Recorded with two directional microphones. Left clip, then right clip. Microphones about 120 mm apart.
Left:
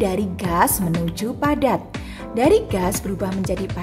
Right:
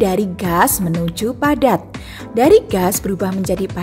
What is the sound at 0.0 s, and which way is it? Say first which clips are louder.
A woman's voice: right 5 dB; 40° right (ahead or behind).